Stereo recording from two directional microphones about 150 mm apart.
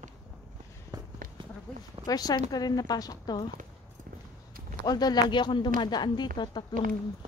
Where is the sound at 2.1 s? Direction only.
25° left (ahead or behind).